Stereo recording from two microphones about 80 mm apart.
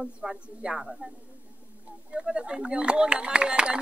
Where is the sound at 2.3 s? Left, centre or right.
Centre.